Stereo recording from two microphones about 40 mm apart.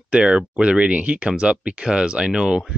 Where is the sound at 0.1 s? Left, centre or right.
Right.